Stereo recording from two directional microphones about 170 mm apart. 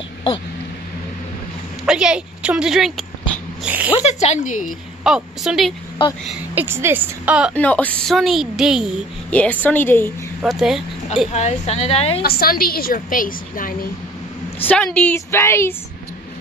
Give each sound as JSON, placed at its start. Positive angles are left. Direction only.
{"t": 1.9, "sound": "a woman's voice", "side_deg": -5}
{"t": 3.9, "sound": "a woman's voice", "side_deg": 40}
{"t": 5.0, "sound": "a woman's voice", "side_deg": -5}
{"t": 6.0, "sound": "speech", "side_deg": 30}
{"t": 6.5, "sound": "a woman's voice", "side_deg": -15}
{"t": 7.5, "sound": "a woman's voice", "side_deg": 10}
{"t": 9.3, "sound": "a woman's voice", "side_deg": 10}
{"t": 10.4, "sound": "a woman's voice", "side_deg": -5}
{"t": 11.3, "sound": "a woman's voice", "side_deg": 40}
{"t": 12.2, "sound": "a woman's voice", "side_deg": 65}
{"t": 14.6, "sound": "a woman's voice", "side_deg": 10}